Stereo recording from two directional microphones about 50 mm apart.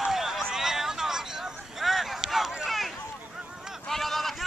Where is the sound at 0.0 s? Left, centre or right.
Centre.